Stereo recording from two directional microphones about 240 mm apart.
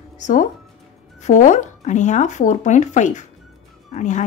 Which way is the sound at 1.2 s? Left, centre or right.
Left.